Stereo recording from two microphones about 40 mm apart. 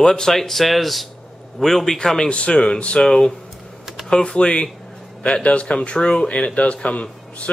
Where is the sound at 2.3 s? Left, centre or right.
Left.